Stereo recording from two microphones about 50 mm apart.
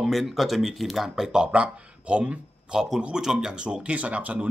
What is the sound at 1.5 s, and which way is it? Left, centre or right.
Speech, right.